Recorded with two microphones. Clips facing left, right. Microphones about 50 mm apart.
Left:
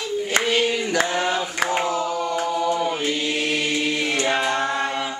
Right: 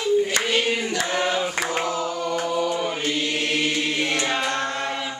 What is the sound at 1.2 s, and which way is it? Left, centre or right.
Singing, centre.